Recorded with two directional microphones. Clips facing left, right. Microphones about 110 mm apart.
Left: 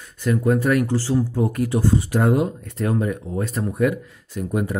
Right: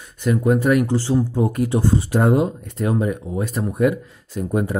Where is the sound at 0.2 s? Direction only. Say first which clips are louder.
Right 2 dB; 15° right (ahead or behind).